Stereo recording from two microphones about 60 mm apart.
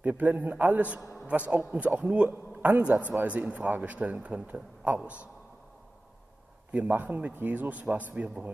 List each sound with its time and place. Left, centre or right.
0.0 s a man's voice: right
6.7 s a man's voice: right